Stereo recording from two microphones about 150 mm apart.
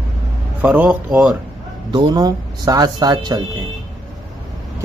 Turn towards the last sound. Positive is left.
turn(degrees=-25)  # may be behind; listen again after turning